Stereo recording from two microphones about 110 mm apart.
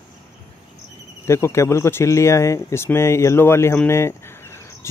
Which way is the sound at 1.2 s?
25° left (ahead or behind).